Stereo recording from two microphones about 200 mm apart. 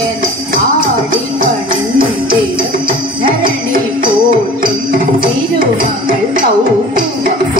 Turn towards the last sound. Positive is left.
turn(degrees=-45)  # may be behind; listen again after turning